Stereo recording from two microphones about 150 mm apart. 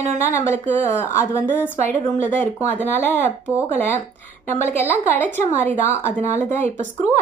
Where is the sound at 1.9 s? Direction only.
50° right (ahead or behind).